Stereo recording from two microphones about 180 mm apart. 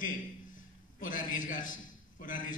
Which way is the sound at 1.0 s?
50° left (ahead or behind).